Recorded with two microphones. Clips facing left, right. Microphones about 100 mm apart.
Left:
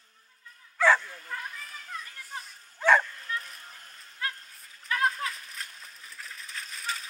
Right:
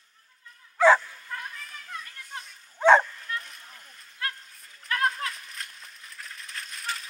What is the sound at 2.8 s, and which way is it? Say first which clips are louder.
Bow-wow: right 5 dB; 20° right (ahead or behind).